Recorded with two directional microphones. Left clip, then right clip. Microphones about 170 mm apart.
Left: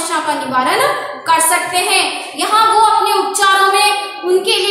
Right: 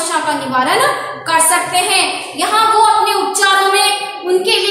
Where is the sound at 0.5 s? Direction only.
10° left (ahead or behind).